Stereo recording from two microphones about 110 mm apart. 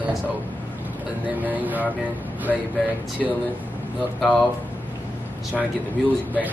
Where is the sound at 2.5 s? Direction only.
5° left (ahead or behind).